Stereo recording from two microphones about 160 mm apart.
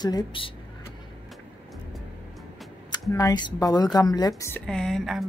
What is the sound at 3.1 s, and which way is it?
A woman's voice, 20° left (ahead or behind).